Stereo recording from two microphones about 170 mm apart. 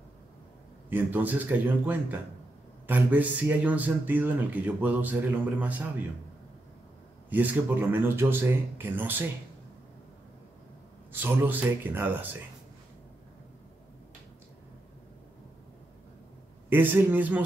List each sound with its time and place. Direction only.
0.8 s speech: 10° right (ahead or behind)
7.2 s speech: 10° right (ahead or behind)
11.1 s speech: 10° right (ahead or behind)
16.6 s speech: 10° right (ahead or behind)